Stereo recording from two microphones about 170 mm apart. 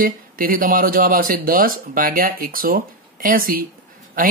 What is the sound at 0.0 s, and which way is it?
Speech, 55° right (ahead or behind).